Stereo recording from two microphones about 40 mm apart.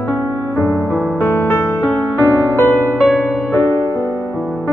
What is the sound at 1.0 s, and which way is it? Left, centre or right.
Music, left.